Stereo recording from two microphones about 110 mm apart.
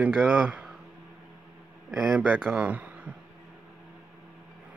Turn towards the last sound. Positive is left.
turn(degrees=-15)  # may be behind; listen again after turning